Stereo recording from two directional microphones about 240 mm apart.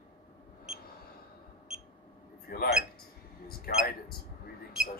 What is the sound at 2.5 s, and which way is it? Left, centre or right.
Speech, left.